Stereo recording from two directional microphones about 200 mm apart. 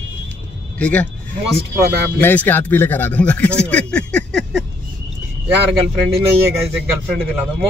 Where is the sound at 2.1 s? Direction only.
10° left (ahead or behind).